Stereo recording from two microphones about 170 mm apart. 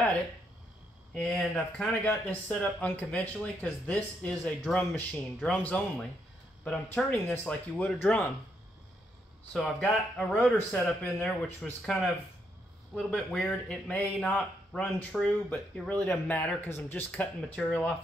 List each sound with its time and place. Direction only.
1.1 s a man's voice: 5° left (ahead or behind)
9.5 s a man's voice: 5° left (ahead or behind)